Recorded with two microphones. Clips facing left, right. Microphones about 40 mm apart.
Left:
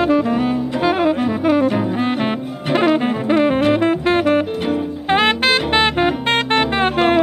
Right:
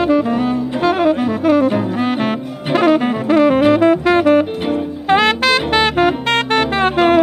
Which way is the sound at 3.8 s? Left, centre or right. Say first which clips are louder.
Right 4 dB; left.